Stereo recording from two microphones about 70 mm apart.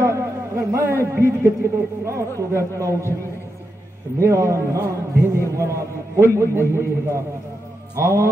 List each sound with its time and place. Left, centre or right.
0.0 s a man's voice: right
4.2 s a man's voice: right